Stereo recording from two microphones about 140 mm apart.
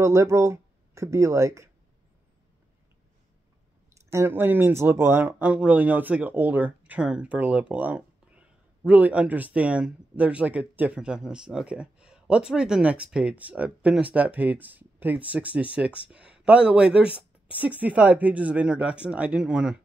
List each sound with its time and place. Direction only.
0.0 s speech: 20° right (ahead or behind)
3.9 s speech: 20° right (ahead or behind)